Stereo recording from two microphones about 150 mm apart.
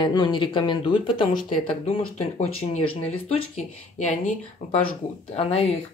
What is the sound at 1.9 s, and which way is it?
Speech, 45° left (ahead or behind).